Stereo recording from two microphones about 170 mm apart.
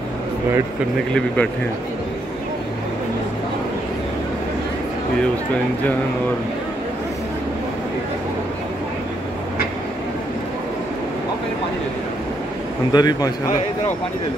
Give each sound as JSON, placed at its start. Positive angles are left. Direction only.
{"t": 1.1, "sound": "speech", "side_deg": 5}
{"t": 12.9, "sound": "a man's voice", "side_deg": 25}